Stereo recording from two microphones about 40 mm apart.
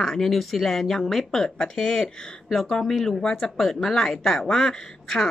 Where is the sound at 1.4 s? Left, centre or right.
Centre.